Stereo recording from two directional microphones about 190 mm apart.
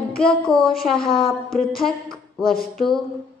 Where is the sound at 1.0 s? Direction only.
30° left (ahead or behind).